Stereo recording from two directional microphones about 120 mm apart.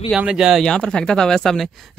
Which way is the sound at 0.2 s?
5° right (ahead or behind).